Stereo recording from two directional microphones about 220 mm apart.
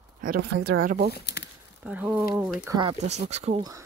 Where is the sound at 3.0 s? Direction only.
30° right (ahead or behind).